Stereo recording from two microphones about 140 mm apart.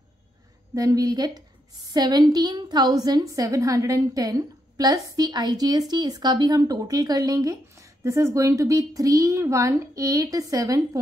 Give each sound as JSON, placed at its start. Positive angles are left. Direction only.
{"t": 0.7, "sound": "a woman's voice", "side_deg": -25}